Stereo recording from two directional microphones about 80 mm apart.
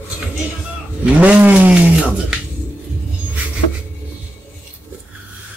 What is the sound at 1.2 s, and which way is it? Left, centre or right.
Speech, centre.